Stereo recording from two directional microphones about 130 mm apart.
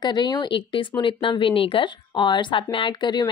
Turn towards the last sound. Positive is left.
turn(degrees=35)  # may be behind; listen again after turning